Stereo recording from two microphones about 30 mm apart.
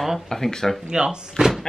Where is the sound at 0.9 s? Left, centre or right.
Right.